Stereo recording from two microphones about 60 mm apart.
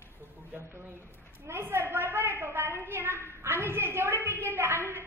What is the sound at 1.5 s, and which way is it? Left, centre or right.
A woman's voice, right.